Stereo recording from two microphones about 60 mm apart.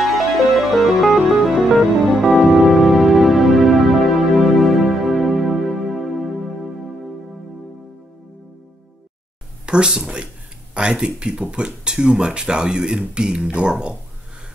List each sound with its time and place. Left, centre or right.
0.0 s music: centre
9.7 s speech: centre